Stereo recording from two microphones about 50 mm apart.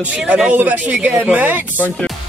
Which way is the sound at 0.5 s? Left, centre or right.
Right.